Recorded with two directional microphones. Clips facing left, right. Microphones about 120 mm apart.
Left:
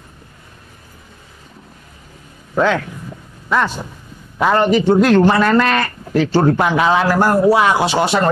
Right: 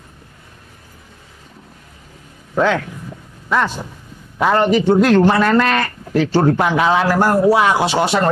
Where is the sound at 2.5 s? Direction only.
25° left (ahead or behind).